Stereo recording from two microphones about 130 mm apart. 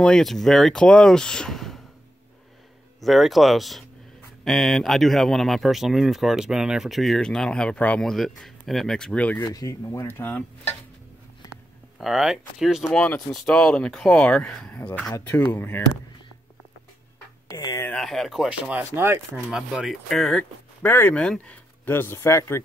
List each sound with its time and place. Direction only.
0.0 s speech: 5° left (ahead or behind)
3.0 s speech: centre (ahead or behind)
9.4 s speech: 25° left (ahead or behind)
12.0 s speech: 5° right (ahead or behind)
12.9 s speech: 10° left (ahead or behind)
17.6 s speech: 30° left (ahead or behind)
17.8 s speech: 5° left (ahead or behind)
18.8 s speech: 20° right (ahead or behind)
19.5 s speech: 5° right (ahead or behind)
20.8 s speech: 15° left (ahead or behind)